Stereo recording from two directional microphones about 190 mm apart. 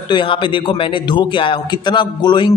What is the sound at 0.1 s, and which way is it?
A man's voice, 25° left (ahead or behind).